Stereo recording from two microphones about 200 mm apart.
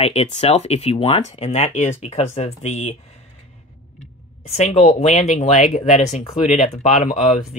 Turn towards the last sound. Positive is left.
turn(degrees=35)  # may be behind; listen again after turning